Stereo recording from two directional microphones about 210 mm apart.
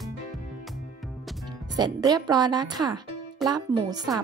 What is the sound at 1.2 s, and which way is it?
Music, centre (ahead or behind).